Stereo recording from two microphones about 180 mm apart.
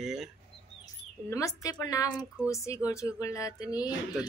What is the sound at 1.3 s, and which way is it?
A woman's voice, 20° left (ahead or behind).